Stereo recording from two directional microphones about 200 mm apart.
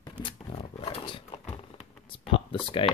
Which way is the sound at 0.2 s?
25° left (ahead or behind).